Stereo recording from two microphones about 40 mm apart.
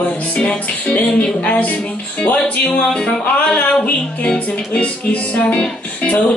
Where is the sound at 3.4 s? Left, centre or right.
Left.